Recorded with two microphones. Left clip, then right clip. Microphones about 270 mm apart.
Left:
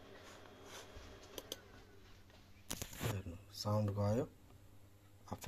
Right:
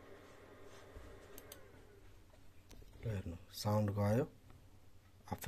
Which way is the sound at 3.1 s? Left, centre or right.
Right.